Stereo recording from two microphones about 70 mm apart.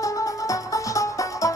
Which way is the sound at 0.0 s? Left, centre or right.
Left.